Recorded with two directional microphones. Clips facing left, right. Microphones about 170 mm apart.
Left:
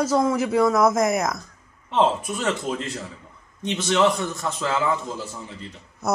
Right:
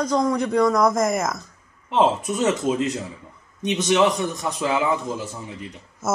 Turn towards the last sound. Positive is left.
turn(degrees=0)  # may be behind; listen again after turning